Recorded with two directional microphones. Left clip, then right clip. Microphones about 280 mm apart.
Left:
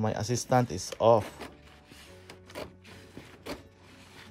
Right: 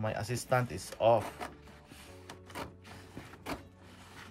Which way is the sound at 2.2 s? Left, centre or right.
Centre.